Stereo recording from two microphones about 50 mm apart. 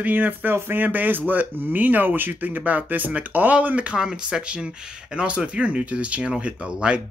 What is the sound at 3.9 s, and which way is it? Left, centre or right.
Speech, centre.